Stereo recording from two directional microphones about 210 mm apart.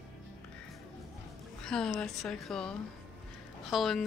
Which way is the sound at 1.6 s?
5° left (ahead or behind).